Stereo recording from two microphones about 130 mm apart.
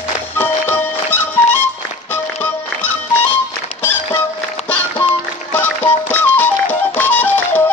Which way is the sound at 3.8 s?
15° left (ahead or behind).